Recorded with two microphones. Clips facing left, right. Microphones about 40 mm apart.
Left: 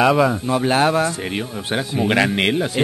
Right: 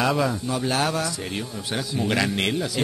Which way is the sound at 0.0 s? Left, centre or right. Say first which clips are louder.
Left 7 dB; left.